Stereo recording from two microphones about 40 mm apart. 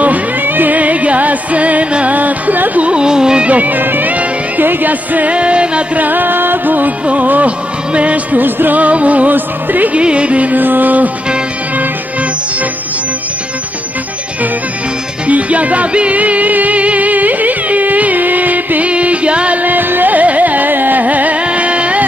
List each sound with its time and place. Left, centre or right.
0.0 s music: right
2.1 s music: right
2.8 s music: right
3.4 s music: right
5.3 s music: right
5.9 s music: right
8.4 s music: right
8.7 s music: right
9.3 s music: right
9.9 s music: right
10.6 s music: right
15.2 s music: right